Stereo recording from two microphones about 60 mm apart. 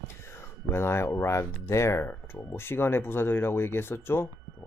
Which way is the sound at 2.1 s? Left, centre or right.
Left.